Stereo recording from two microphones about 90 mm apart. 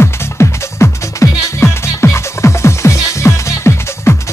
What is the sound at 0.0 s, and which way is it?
Music, 30° left (ahead or behind).